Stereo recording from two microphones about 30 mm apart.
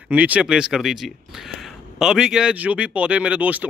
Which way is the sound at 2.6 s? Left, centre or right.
Right.